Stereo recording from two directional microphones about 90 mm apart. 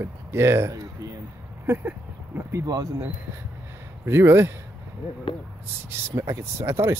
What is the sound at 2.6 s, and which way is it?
Speech, 45° right (ahead or behind).